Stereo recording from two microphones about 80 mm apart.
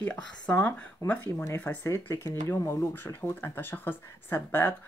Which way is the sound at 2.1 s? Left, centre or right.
Left.